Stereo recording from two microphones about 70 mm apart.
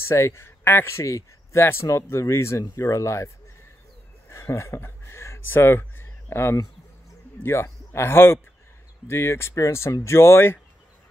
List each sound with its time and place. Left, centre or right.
0.1 s speech: left
4.3 s a sound: left
7.4 s speech: left